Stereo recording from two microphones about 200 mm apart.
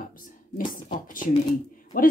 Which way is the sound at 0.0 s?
45° left (ahead or behind).